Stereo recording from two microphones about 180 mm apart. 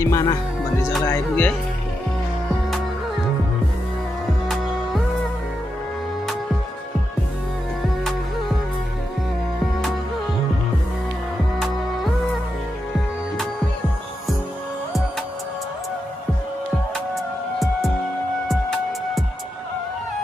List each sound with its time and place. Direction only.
0.0 s speech: 20° left (ahead or behind)
17.1 s music: centre (ahead or behind)